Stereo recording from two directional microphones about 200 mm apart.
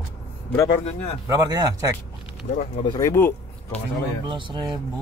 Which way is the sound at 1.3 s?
20° right (ahead or behind).